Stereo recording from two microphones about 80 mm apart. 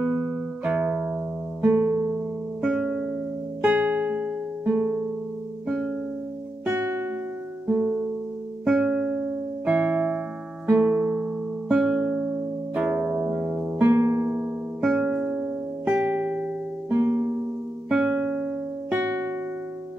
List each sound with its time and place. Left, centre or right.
0.1 s music: centre
1.6 s music: right; by 3.2 s centre
3.6 s music: right; by 5.9 s centre
6.7 s music: right
7.6 s music: centre
12.7 s harp: centre
13.9 s music: right
14.8 s music: centre
16.9 s music: right
17.8 s music: centre; by 19.3 s right